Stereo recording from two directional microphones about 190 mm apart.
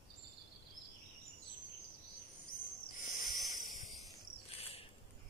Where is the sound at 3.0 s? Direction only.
45° left (ahead or behind).